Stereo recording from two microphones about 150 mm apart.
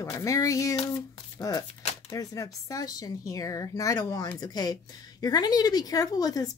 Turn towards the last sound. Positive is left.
turn(degrees=25)  # may be behind; listen again after turning